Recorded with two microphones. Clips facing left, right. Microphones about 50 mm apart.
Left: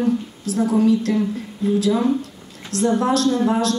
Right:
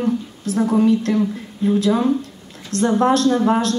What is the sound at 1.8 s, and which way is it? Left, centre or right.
Speech, right.